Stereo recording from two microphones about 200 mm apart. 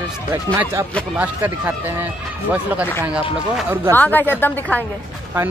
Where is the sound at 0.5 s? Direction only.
10° right (ahead or behind).